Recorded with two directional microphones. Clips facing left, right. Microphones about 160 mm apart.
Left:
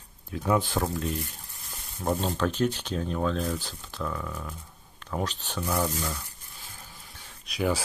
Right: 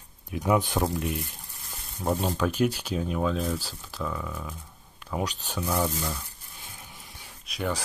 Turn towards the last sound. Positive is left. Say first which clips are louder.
# left 3 dB
turn(degrees=0)  # may be behind; listen again after turning